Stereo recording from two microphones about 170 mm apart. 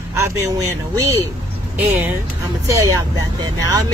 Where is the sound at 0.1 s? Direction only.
20° right (ahead or behind).